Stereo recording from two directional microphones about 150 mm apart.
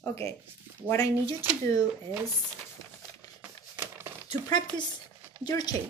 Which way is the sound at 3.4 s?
15° right (ahead or behind).